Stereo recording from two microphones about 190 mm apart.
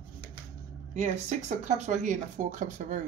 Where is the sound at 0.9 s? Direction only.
40° right (ahead or behind).